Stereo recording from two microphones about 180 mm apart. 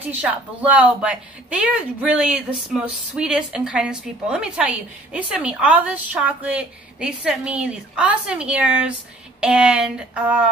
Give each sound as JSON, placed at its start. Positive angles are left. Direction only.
{"t": 0.0, "sound": "speech", "side_deg": -10}